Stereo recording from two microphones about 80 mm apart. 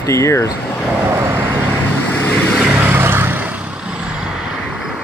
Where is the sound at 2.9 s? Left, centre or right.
Right.